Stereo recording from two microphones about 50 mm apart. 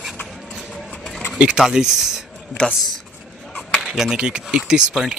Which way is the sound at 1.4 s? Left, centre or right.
Centre.